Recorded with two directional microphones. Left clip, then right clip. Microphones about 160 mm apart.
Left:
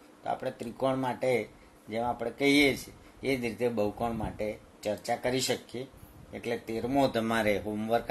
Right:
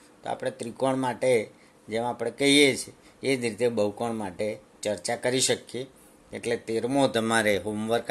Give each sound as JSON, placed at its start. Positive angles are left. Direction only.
{"t": 0.2, "sound": "speech", "side_deg": -40}